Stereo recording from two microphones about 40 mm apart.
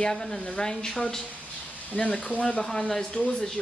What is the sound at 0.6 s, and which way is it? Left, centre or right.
Speech, centre.